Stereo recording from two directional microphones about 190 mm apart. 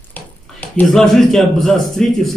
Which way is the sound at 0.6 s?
5° left (ahead or behind).